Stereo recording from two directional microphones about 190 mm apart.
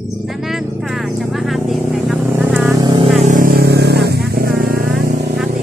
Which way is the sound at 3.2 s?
45° right (ahead or behind).